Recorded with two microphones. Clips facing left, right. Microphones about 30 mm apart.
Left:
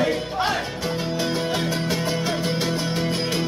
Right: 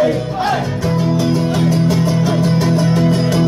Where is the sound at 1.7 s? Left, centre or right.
Centre.